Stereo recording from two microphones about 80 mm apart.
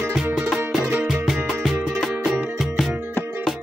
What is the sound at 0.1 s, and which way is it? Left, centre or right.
Music, centre.